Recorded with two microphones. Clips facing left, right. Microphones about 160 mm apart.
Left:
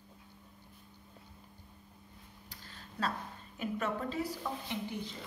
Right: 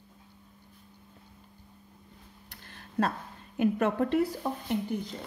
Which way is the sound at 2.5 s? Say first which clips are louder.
Right 1 dB; 55° right (ahead or behind).